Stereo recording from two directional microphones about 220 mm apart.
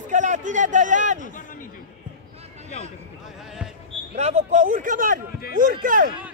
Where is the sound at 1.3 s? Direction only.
35° left (ahead or behind).